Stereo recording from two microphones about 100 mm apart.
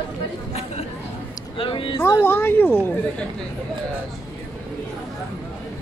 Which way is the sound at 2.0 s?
25° left (ahead or behind).